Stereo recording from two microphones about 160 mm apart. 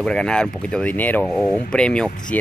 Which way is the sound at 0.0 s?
5° left (ahead or behind).